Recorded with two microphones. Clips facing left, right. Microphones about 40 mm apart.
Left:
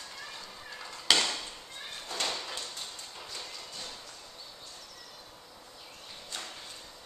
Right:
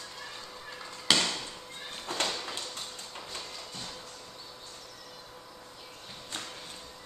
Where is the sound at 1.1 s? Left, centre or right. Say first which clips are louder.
Even; centre.